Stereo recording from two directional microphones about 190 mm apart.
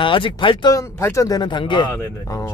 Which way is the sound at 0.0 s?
25° left (ahead or behind).